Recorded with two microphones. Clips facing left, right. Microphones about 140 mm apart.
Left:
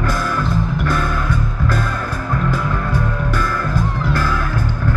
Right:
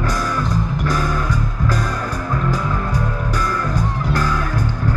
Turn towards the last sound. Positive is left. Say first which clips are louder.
# left 1 dB
turn(degrees=-40)  # may be behind; listen again after turning